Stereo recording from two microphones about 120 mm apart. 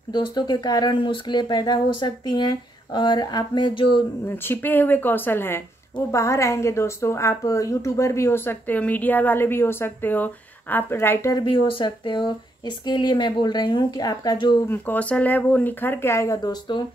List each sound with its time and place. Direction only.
0.1 s speech: 40° left (ahead or behind)
4.3 s a woman's voice: 20° left (ahead or behind)
11.3 s speech: 45° left (ahead or behind)
14.7 s speech: 15° left (ahead or behind)